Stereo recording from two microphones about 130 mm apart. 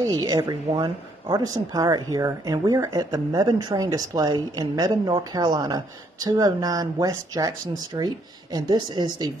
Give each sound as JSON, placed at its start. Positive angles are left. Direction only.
{"t": 0.0, "sound": "a woman's voice", "side_deg": -30}